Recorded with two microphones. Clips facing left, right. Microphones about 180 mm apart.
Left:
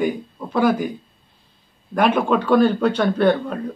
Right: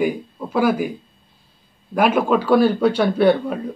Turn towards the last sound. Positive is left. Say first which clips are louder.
# right 2 dB
turn(degrees=-5)  # may be behind; listen again after turning